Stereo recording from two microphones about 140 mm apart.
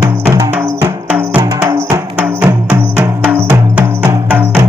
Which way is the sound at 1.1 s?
15° right (ahead or behind).